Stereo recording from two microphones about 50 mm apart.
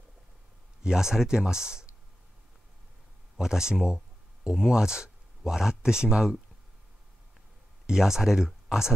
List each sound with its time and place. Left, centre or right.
0.8 s speech: centre
3.3 s speech: centre
7.8 s speech: centre